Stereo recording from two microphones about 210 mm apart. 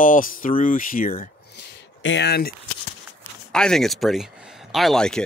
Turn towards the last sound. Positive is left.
turn(degrees=5)  # may be behind; listen again after turning